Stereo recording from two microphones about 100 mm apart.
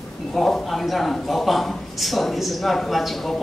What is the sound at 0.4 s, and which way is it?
A man's voice, centre (ahead or behind).